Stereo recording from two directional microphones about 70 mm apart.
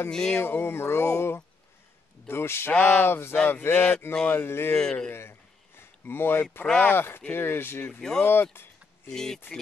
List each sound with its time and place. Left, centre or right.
0.1 s speech: centre
0.4 s speech: left
2.7 s speech: centre
3.1 s speech: left
3.7 s speech: centre
4.3 s speech: left
4.7 s speech: centre
5.8 s a sound: left
6.6 s speech: centre
6.9 s speech: left
8.0 s speech: centre